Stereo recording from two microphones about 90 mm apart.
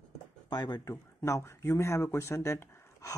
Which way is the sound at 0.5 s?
50° left (ahead or behind).